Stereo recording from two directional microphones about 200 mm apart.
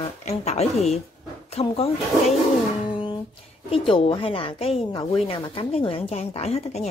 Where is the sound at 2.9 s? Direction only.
25° left (ahead or behind).